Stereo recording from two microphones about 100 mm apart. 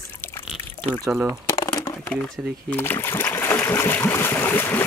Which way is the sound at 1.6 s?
40° left (ahead or behind).